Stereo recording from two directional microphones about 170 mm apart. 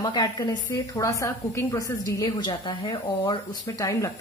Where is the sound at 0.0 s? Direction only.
25° left (ahead or behind).